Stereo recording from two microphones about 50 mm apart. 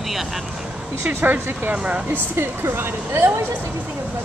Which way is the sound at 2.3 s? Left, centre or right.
Right.